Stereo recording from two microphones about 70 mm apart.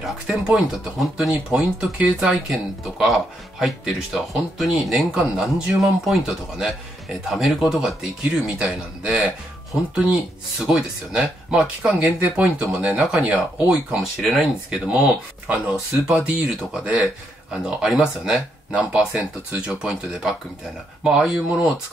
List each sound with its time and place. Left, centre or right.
0.0 s speech: centre
2.2 s speech: centre
10.6 s speech: centre
14.2 s speech: centre
15.4 s speech: centre